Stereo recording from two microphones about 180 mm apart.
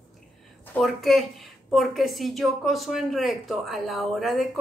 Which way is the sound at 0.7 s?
Centre (ahead or behind).